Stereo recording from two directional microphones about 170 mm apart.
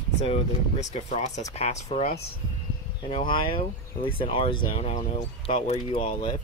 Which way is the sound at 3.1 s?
30° left (ahead or behind).